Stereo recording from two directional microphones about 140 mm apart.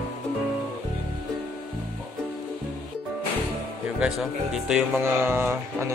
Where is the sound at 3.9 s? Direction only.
5° right (ahead or behind).